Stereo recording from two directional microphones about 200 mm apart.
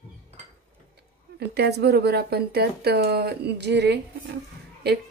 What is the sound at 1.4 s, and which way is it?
Speech, 55° right (ahead or behind).